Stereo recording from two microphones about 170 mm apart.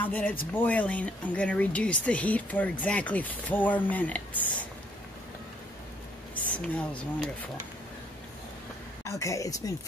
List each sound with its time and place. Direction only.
0.0 s speech: 10° left (ahead or behind)
6.4 s speech: 10° left (ahead or behind)
9.0 s a woman's voice: 20° left (ahead or behind)